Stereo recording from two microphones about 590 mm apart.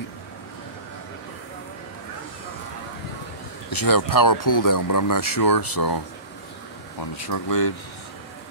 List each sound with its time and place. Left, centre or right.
3.7 s speech: left